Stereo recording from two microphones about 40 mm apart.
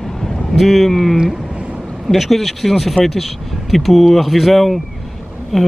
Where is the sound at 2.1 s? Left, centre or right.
Centre.